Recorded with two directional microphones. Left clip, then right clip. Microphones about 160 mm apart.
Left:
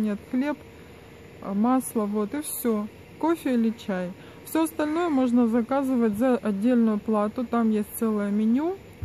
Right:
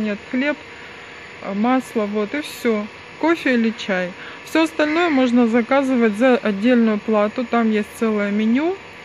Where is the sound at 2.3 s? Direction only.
20° left (ahead or behind).